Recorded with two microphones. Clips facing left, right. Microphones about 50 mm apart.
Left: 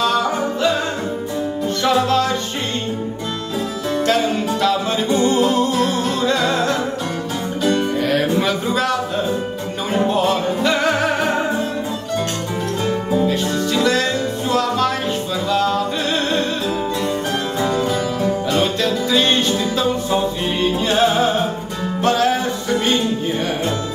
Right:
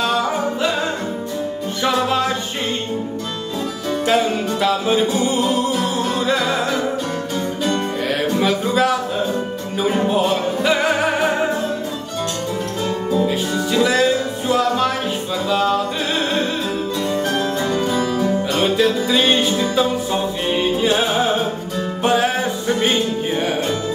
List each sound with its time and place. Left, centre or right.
0.0 s music: centre
1.8 s music: centre
4.0 s music: centre
8.1 s a sound: centre
9.8 s music: centre
13.3 s music: centre
17.8 s music: centre
18.8 s music: centre